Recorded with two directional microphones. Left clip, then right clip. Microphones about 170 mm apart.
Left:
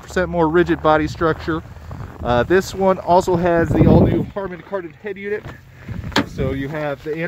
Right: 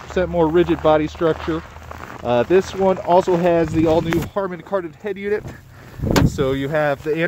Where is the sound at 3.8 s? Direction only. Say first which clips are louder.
Left 2 dB; 5° right (ahead or behind).